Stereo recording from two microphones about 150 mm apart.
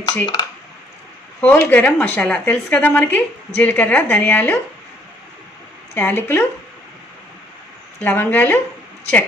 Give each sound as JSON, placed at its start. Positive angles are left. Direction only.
{"t": 0.0, "sound": "speech", "side_deg": 25}
{"t": 1.4, "sound": "a woman's voice", "side_deg": 10}
{"t": 5.9, "sound": "a woman's voice", "side_deg": 15}
{"t": 8.0, "sound": "a woman's voice", "side_deg": 10}